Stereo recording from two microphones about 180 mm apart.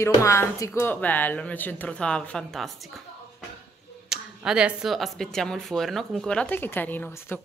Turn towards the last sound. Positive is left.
turn(degrees=10)  # may be behind; listen again after turning